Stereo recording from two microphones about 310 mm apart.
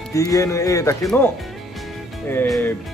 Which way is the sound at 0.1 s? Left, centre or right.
Centre.